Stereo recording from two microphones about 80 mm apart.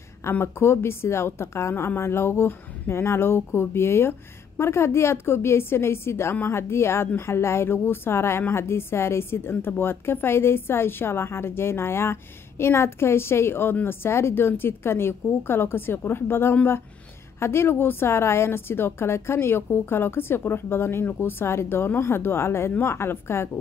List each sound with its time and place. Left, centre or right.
0.2 s a woman's voice: left